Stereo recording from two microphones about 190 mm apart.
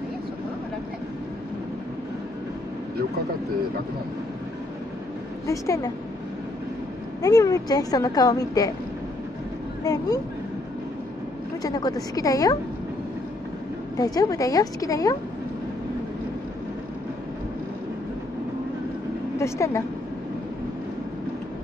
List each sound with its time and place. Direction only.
5.5 s speech: 15° left (ahead or behind)
7.2 s a woman's voice: 20° left (ahead or behind)
9.8 s a woman's voice: 20° left (ahead or behind)
11.6 s a woman's voice: 20° left (ahead or behind)
13.9 s a woman's voice: 20° left (ahead or behind)
19.3 s speech: 15° left (ahead or behind)